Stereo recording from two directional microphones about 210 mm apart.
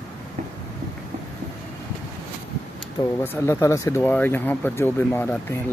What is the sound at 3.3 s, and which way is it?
Speech, 10° left (ahead or behind).